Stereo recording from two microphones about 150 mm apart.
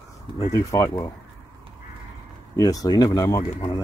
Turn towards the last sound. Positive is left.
turn(degrees=25)  # may be behind; listen again after turning